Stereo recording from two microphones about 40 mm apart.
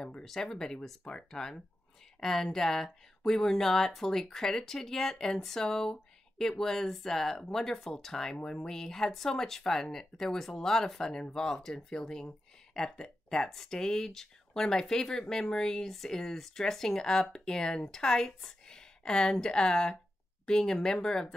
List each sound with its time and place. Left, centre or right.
0.2 s speech: centre